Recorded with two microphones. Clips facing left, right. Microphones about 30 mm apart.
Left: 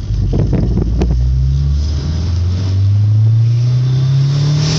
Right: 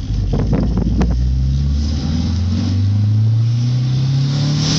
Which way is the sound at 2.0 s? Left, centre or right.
Right.